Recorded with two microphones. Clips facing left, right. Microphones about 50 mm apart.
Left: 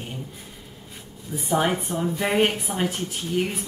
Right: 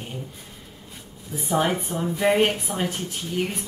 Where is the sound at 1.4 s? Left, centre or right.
Centre.